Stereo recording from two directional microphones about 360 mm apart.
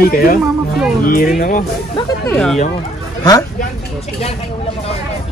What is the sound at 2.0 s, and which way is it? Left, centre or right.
Speech, centre.